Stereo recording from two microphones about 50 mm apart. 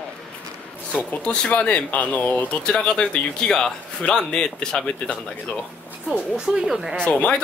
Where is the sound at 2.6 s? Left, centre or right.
Centre.